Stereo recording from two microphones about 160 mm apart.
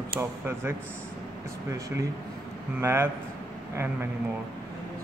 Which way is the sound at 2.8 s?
15° right (ahead or behind).